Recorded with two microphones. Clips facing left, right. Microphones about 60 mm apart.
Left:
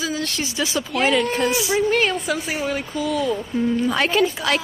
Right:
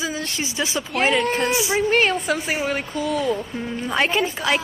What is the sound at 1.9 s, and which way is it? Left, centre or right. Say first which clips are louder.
Speech: right 1 dB; right.